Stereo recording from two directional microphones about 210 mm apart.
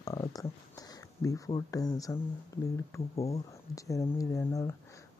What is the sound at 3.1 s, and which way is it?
Speech, 30° left (ahead or behind).